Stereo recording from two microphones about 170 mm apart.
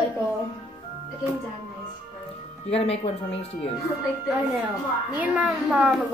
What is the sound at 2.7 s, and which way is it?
Speech, 35° left (ahead or behind).